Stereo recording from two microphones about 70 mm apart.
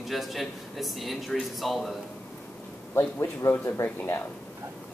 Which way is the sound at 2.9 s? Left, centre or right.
Left.